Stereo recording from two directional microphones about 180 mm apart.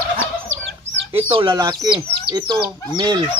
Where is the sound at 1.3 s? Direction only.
25° right (ahead or behind).